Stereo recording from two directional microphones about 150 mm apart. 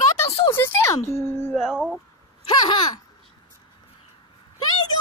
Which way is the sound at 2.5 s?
30° left (ahead or behind).